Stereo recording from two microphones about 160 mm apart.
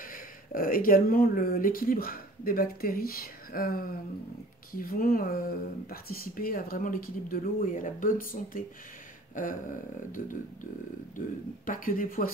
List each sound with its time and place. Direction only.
0.0 s speech: 60° left (ahead or behind)
9.3 s a sound: 55° left (ahead or behind)
10.2 s speech: 60° left (ahead or behind)